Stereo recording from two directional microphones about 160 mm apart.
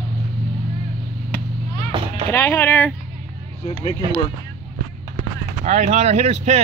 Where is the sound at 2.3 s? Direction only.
15° left (ahead or behind).